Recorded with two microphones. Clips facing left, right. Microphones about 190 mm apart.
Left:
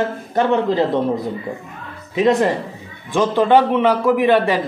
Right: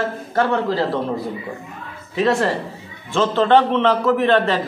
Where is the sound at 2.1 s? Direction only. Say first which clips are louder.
Left 3 dB; 15° left (ahead or behind).